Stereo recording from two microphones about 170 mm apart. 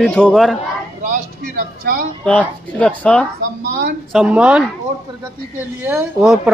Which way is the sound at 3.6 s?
80° right.